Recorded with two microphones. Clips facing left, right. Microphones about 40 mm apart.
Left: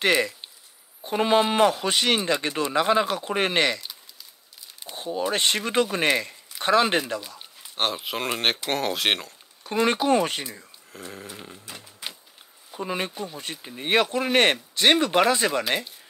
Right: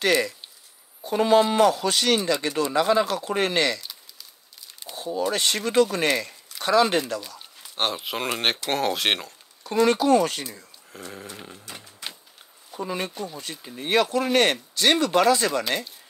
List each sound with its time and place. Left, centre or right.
0.0 s speech: left
4.9 s a sound: left
5.3 s speech: left
7.2 s a sound: centre
7.7 s speech: centre
9.6 s speech: left
11.0 s a sound: centre
12.8 s speech: left
13.1 s speech: centre
13.4 s speech: left